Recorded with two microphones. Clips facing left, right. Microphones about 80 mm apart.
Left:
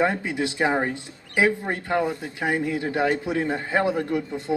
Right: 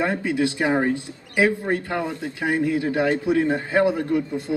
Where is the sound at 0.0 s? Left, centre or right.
Left.